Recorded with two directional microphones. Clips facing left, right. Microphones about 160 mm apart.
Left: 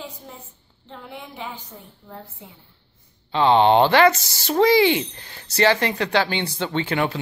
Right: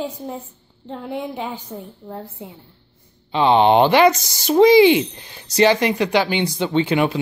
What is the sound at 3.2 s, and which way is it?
Speech, 15° right (ahead or behind).